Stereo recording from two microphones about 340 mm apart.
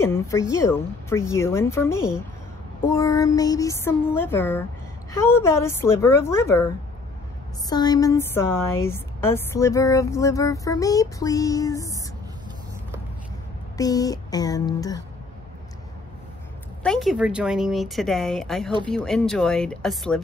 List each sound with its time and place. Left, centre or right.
0.0 s a woman's voice: centre
7.7 s a woman's voice: centre
13.7 s a woman's voice: centre
16.8 s speech: centre